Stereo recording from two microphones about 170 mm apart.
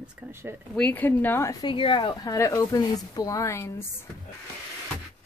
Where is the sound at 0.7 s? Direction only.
10° left (ahead or behind).